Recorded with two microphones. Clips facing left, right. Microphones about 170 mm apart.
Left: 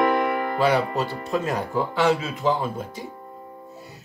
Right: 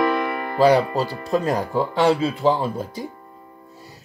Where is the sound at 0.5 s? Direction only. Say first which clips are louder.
Right 7 dB; 35° right (ahead or behind).